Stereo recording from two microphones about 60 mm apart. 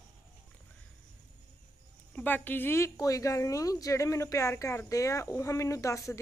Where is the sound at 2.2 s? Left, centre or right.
Left.